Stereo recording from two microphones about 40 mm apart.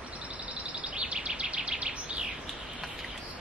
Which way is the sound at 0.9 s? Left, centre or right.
Right.